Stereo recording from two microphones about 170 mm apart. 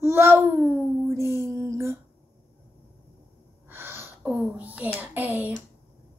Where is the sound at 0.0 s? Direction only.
15° right (ahead or behind).